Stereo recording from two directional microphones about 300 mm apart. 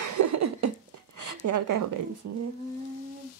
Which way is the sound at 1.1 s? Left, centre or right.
Right.